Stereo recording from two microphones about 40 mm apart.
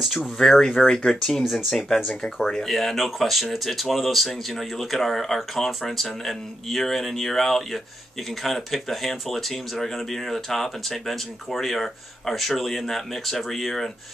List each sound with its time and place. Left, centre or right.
0.2 s speech: centre